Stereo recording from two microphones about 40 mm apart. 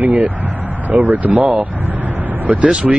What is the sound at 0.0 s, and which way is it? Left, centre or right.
Speech, right.